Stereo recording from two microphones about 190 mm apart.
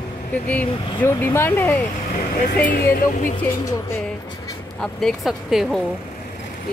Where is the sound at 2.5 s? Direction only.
55° left (ahead or behind).